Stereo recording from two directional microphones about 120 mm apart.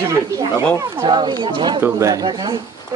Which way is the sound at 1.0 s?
40° right (ahead or behind).